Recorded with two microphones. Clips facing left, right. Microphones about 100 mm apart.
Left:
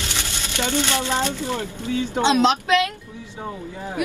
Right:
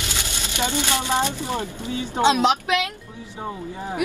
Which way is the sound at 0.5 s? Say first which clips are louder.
Left 1 dB; 15° right (ahead or behind).